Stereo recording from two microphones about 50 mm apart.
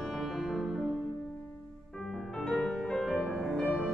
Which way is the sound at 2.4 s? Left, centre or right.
Centre.